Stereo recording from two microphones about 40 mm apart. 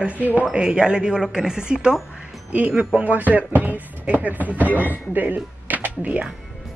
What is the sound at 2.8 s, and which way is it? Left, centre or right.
Speech, right.